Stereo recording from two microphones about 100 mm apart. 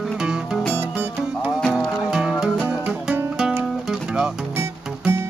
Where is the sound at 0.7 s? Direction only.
20° right (ahead or behind).